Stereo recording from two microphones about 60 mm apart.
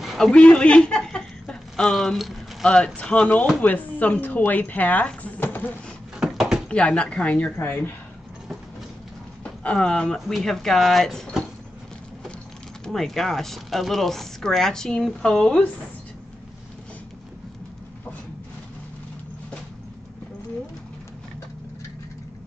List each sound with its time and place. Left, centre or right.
0.2 s speech: centre
2.6 s speech: centre
5.4 s a sound: left
6.2 s door: centre
6.7 s speech: centre
7.5 s speech: left
9.4 s speech: centre
12.8 s speech: centre